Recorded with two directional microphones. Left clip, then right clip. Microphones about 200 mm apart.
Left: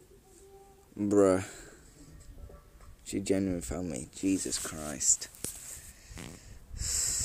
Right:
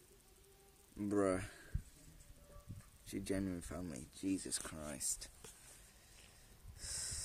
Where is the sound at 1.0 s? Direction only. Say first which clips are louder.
Left 12 dB; centre (ahead or behind).